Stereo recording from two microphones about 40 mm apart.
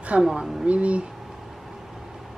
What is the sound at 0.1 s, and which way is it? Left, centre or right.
Speech, right.